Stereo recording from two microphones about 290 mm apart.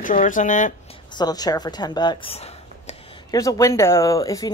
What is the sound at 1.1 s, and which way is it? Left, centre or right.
A woman's voice, centre.